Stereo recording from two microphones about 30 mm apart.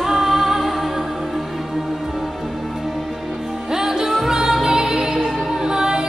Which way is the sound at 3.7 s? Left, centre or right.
Centre.